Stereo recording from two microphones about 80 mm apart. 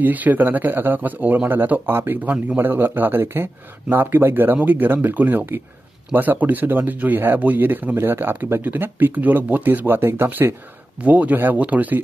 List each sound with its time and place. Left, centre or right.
0.0 s speech: right